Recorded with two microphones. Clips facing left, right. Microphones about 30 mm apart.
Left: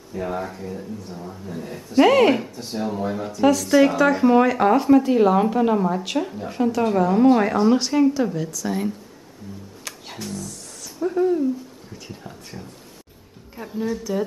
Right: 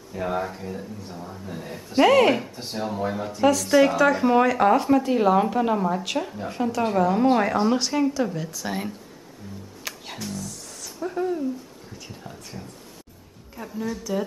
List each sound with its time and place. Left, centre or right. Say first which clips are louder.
0.4 s speech: even; centre
8.5 s speech: left 4 dB; right
9.9 s music: right 2 dB; centre
10.2 s speech: left 2 dB; centre
13.8 s speech: left 3 dB; centre